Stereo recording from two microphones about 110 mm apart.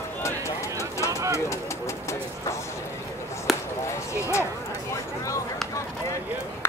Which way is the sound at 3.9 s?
25° left (ahead or behind).